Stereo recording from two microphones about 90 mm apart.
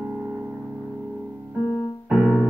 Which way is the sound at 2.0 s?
5° right (ahead or behind).